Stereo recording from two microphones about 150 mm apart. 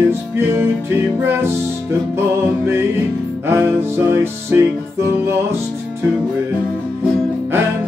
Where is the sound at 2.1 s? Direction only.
15° right (ahead or behind).